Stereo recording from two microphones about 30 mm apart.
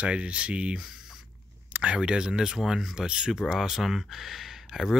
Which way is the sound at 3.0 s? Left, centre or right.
Right.